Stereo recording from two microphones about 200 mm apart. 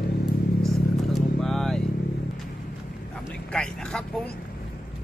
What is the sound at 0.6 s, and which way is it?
Vehicle, centre (ahead or behind).